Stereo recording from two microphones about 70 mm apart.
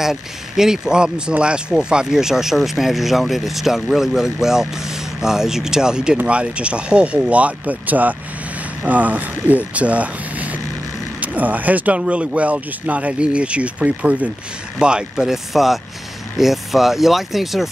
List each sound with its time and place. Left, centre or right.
0.0 s speech: centre